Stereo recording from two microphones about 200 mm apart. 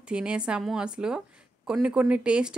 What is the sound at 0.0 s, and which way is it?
A woman's voice, 5° right (ahead or behind).